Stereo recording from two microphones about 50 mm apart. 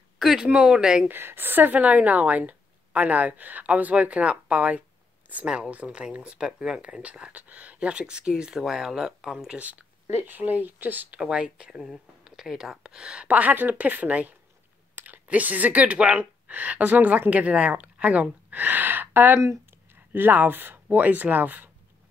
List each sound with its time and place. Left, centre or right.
0.2 s speech: centre
1.0 s speech: right; by 9.6 s centre
9.6 s speech: right
11.1 s speech: centre; by 19.3 s right
19.3 s speech: right
20.1 s speech: right